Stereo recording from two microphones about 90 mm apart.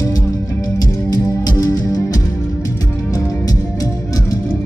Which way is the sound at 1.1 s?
45° left (ahead or behind).